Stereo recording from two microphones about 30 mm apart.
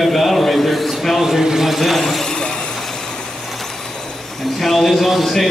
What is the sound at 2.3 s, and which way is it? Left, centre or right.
Vehicle, left.